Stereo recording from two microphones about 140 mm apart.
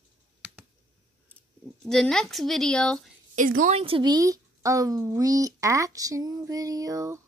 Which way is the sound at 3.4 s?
70° right (ahead or behind).